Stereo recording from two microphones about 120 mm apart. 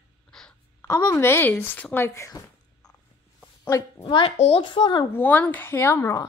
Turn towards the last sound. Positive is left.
turn(degrees=25)  # may be behind; listen again after turning